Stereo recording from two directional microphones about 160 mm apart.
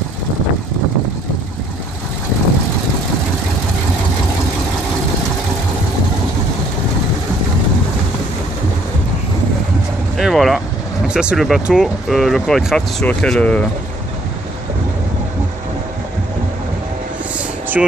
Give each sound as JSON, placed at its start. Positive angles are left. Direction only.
{"t": 10.1, "sound": "vehicle", "side_deg": 0}
{"t": 11.1, "sound": "speech", "side_deg": -5}
{"t": 17.8, "sound": "speech", "side_deg": -5}